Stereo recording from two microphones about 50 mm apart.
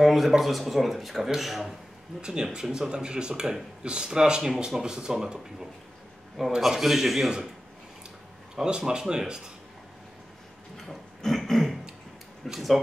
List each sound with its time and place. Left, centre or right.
0.0 s speech: centre
2.2 s speech: centre
8.5 s speech: centre
10.9 s a sound: centre
12.4 s speech: centre